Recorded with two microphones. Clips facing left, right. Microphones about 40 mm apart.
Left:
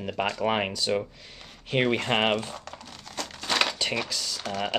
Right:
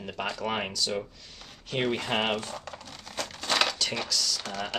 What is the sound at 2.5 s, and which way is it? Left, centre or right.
Crumpling, centre.